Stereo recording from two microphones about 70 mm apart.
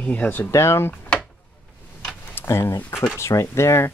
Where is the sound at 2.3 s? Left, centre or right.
Left.